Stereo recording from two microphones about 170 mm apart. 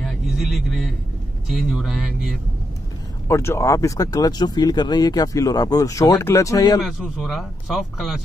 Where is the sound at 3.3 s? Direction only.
15° left (ahead or behind).